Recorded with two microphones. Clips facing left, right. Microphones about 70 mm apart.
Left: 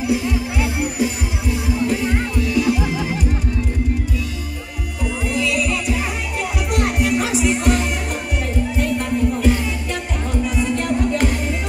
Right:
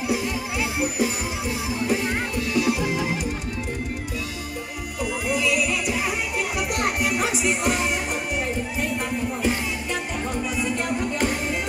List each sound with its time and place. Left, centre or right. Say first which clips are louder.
5.3 s music: left 2 dB; centre